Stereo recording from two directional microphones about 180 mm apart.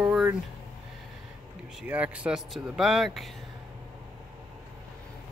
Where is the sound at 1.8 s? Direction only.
5° right (ahead or behind).